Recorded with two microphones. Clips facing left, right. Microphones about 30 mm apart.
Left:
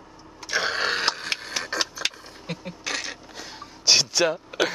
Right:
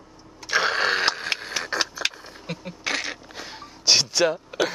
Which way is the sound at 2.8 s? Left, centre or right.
Centre.